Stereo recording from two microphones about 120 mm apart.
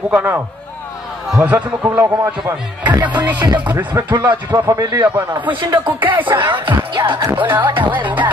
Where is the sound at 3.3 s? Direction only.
35° right (ahead or behind).